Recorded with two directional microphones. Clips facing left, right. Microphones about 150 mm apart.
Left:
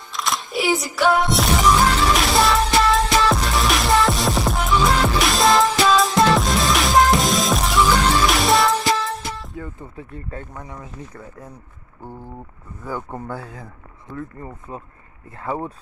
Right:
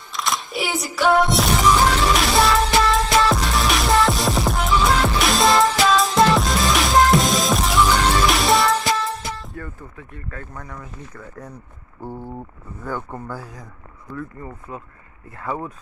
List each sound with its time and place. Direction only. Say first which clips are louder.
0.1 s music: left 1 dB; centre (ahead or behind)
9.9 s speech: left 3 dB; 30° left (ahead or behind)
10.5 s speech: left 1 dB; 20° left (ahead or behind)
12.8 s speech: even; 10° left (ahead or behind)
13.3 s speech: left 2 dB; 25° left (ahead or behind)